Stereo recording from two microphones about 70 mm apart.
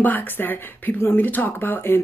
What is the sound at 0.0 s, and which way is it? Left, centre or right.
A woman's voice, left.